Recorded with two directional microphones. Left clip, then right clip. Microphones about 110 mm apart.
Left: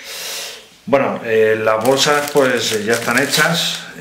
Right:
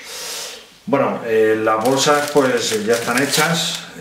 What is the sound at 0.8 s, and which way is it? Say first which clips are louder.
Speech: left 2 dB; 20° left (ahead or behind).